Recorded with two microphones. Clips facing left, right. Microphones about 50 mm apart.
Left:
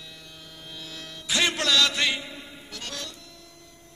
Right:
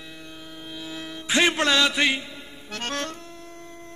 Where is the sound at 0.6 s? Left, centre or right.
Centre.